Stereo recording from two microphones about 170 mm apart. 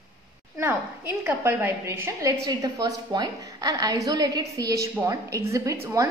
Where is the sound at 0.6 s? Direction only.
15° right (ahead or behind).